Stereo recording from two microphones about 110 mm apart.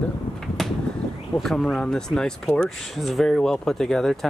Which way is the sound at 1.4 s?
5° left (ahead or behind).